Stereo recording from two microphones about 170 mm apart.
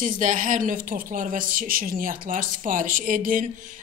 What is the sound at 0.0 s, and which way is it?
A woman's voice, 50° right (ahead or behind).